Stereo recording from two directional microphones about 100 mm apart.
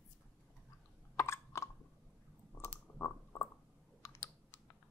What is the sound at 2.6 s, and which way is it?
Typing, 25° left (ahead or behind).